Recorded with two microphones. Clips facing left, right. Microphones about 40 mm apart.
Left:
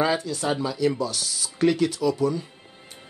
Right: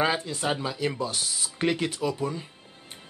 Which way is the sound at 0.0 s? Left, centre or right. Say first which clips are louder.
Left 2 dB; right.